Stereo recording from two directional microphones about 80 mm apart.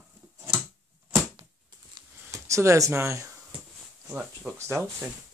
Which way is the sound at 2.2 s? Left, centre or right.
Right.